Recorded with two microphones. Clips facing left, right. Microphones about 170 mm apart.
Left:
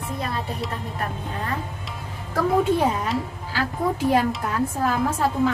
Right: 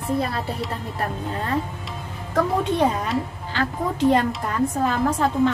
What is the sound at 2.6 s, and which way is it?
Speech, 5° left (ahead or behind).